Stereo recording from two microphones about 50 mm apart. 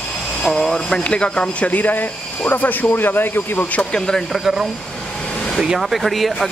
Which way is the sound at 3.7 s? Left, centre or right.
Left.